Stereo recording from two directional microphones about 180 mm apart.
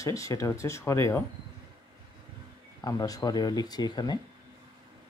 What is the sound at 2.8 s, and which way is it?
Speech, 20° left (ahead or behind).